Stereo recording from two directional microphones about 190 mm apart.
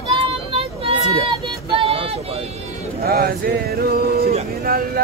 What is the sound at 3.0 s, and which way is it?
Speech, 55° right (ahead or behind).